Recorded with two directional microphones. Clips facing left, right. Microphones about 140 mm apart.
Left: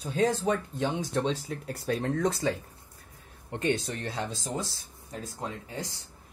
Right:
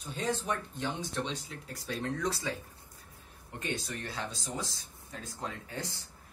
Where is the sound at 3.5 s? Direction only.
80° left.